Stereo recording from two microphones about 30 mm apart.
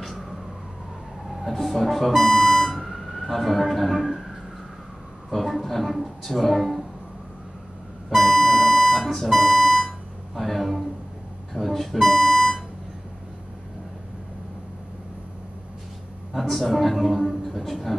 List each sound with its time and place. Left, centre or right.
0.0 s emergency vehicle: centre
1.2 s speech: centre
2.9 s emergency vehicle: centre
3.9 s speech: centre
5.3 s a woman's voice: centre
8.1 s music: centre
9.8 s a sound: centre
11.6 s music: centre
12.2 s a sound: centre
16.3 s speech: centre
17.1 s a man's voice: centre